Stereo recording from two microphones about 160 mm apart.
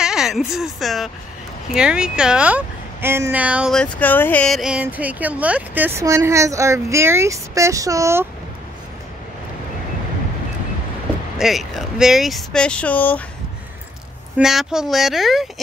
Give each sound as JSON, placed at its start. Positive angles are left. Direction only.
{"t": 0.0, "sound": "speech", "side_deg": -5}
{"t": 3.7, "sound": "speech", "side_deg": 10}
{"t": 11.3, "sound": "speech", "side_deg": 0}
{"t": 14.4, "sound": "speech", "side_deg": 0}